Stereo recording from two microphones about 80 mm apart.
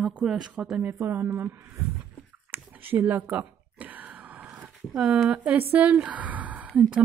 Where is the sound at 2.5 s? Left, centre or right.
Right.